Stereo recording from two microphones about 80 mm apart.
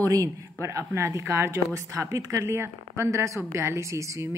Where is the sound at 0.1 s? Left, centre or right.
Right.